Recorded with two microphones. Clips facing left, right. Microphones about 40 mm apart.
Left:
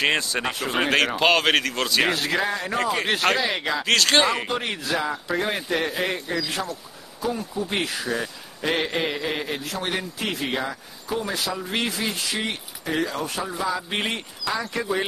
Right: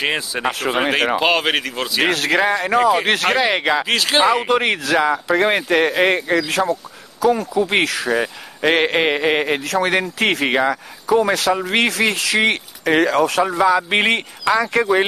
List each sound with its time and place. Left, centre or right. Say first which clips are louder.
0.0 s speech: right 2 dB; centre
2.0 s speech: right 5 dB; right
2.3 s speech: right 8 dB; right
2.8 s speech: right 9 dB; centre
3.3 s speech: right 7 dB; right
3.8 s speech: right 2 dB; centre
4.5 s speech: right 9 dB; right
7.2 s speech: right 11 dB; right
8.1 s speech: right 8 dB; right